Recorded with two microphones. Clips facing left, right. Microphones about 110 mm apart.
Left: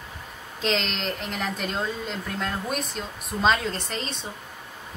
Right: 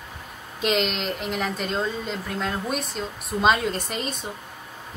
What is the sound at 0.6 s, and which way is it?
A woman's voice, 10° right (ahead or behind).